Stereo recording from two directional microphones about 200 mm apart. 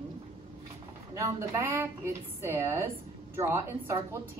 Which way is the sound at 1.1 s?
15° right (ahead or behind).